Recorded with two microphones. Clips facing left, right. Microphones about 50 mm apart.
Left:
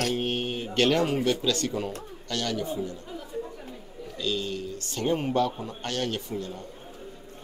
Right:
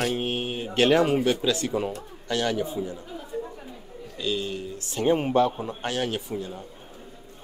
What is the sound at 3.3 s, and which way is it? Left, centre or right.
Chatter, centre.